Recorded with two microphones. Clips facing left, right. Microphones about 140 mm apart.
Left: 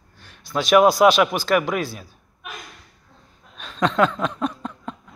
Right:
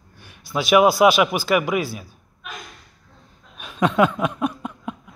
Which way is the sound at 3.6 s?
10° right (ahead or behind).